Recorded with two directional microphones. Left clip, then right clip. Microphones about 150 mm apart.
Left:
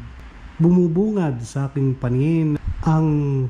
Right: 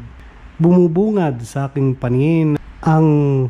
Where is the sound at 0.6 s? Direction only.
15° left (ahead or behind).